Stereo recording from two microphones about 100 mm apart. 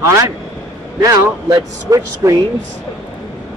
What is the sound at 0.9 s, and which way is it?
Speech, 35° right (ahead or behind).